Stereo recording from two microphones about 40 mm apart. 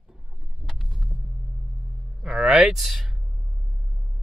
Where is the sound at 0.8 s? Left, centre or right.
Centre.